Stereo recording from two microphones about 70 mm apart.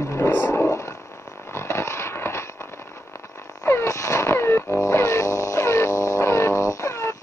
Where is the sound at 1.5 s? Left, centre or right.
Left.